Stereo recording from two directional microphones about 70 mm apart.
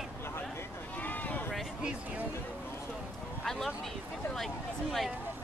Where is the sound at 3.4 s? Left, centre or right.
Centre.